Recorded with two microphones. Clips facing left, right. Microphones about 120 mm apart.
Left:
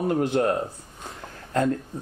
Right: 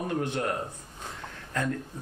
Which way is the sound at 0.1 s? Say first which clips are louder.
Left 8 dB; 30° left (ahead or behind).